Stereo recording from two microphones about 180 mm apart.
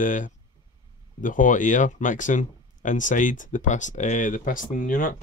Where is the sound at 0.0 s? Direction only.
45° left (ahead or behind).